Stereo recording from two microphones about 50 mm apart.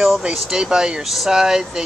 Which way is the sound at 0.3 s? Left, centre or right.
Centre.